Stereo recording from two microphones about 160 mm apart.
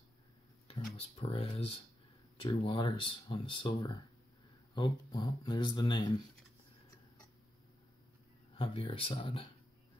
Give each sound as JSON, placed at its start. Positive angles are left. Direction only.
{"t": 0.7, "sound": "speech", "side_deg": 35}
{"t": 8.5, "sound": "speech", "side_deg": 35}